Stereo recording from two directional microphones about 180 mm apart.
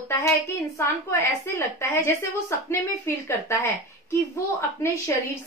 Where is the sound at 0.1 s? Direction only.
15° left (ahead or behind).